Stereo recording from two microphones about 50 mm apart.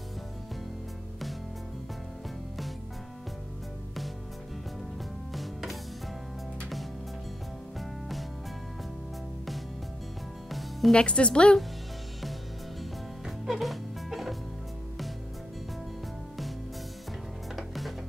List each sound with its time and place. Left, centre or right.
5.3 s music: centre
10.9 s a woman's voice: centre
13.2 s music: centre
17.6 s music: centre